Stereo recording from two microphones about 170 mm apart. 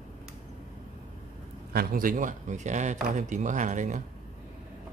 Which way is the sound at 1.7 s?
60° right (ahead or behind).